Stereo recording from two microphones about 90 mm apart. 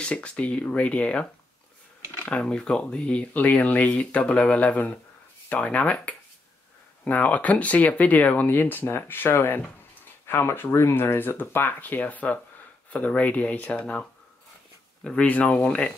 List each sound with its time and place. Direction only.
0.0 s speech: 10° left (ahead or behind)
15.0 s speech: 15° left (ahead or behind)